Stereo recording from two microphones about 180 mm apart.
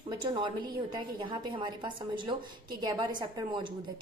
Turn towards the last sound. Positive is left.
turn(degrees=-25)  # may be behind; listen again after turning